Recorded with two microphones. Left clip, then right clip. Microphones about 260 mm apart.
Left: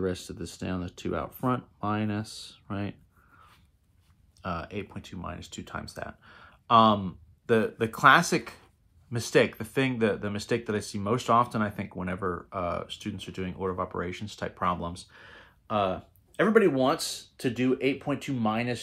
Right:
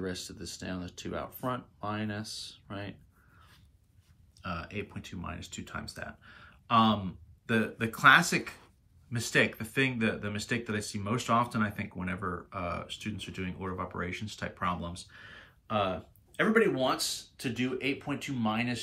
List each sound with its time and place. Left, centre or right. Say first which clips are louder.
0.0 s speech: left 6 dB; left
4.4 s speech: left 4 dB; centre